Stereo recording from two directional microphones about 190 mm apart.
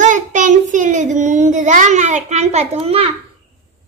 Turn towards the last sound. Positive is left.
turn(degrees=-30)  # may be behind; listen again after turning